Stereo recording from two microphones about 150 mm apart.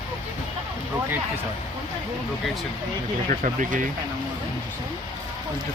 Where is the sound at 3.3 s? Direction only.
60° right (ahead or behind).